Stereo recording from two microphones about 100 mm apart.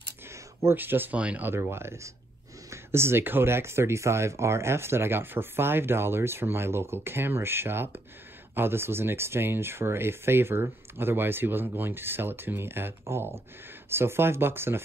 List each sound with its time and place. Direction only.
0.3 s speech: 25° right (ahead or behind)